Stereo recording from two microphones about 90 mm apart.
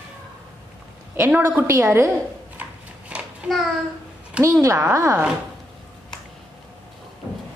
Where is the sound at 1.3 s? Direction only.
15° right (ahead or behind).